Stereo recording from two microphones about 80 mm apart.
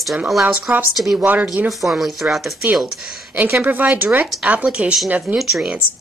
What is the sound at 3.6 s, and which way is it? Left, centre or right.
Speech, right.